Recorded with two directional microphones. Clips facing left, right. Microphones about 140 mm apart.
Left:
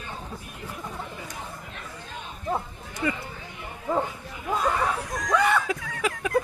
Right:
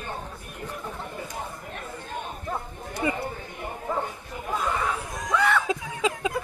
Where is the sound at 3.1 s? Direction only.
45° right (ahead or behind).